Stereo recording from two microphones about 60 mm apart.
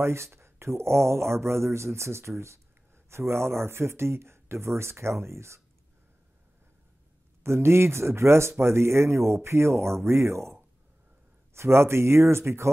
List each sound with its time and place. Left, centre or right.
0.0 s speech: right
7.4 s speech: right